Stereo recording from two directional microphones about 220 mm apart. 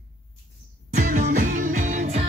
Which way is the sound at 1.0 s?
40° right (ahead or behind).